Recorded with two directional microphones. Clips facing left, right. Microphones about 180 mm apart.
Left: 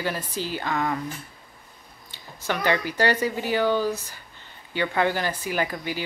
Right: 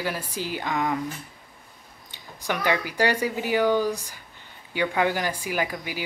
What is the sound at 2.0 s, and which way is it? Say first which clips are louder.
A woman's voice: even; 15° right (ahead or behind).